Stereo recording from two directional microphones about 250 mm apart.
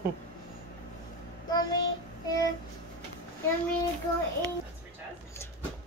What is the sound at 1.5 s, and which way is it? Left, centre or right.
Child singing, centre.